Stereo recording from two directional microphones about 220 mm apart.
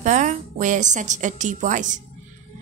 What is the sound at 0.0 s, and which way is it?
A woman's voice, 35° right (ahead or behind).